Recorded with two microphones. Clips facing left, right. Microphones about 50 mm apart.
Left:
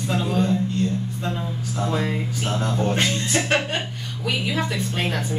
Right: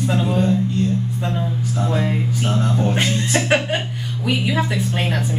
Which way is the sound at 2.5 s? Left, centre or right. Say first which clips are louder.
Right 1 dB; centre.